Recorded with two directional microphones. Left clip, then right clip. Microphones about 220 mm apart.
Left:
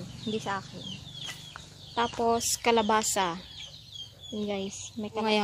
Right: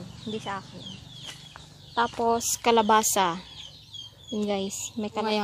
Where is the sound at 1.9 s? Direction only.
15° right (ahead or behind); by 3.4 s 30° right (ahead or behind).